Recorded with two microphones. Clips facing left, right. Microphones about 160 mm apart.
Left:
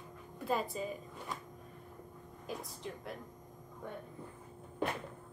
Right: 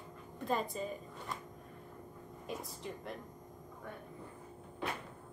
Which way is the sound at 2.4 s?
Centre (ahead or behind).